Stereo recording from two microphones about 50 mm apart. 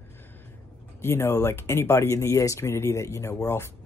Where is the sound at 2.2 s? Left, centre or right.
Left.